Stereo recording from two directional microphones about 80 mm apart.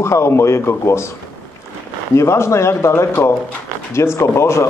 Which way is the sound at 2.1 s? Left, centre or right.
Left.